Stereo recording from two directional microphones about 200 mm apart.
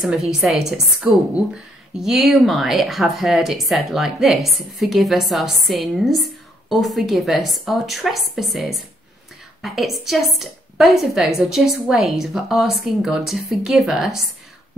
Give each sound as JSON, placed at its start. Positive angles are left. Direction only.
{"t": 0.0, "sound": "a woman's voice", "side_deg": 0}